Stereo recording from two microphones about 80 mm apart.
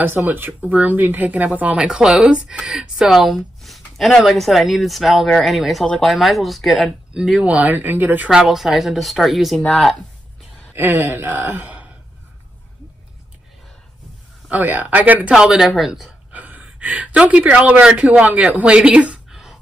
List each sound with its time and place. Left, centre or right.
0.0 s speech: right; by 7.4 s centre
7.4 s speech: centre
8.3 s speech: centre
10.7 s speech: right
14.5 s speech: right
15.3 s speech: centre
16.3 s speech: centre